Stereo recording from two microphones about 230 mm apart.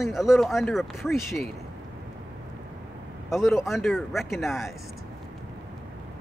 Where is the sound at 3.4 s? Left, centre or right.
Centre.